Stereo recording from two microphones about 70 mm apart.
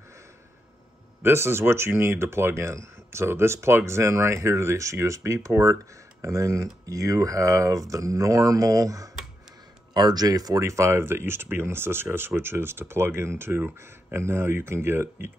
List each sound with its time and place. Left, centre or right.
1.2 s speech: right
9.9 s speech: right
10.6 s speech: right